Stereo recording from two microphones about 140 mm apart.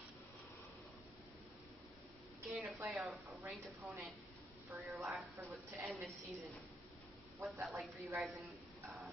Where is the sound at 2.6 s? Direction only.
10° right (ahead or behind).